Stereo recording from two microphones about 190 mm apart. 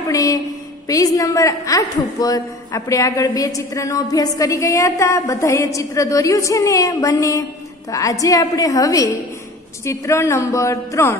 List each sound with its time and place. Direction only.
0.1 s a woman's voice: 15° left (ahead or behind)